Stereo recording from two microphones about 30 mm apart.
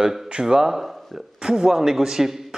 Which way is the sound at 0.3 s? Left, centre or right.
Right.